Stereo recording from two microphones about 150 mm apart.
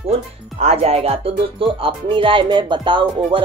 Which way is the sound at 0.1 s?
40° right (ahead or behind).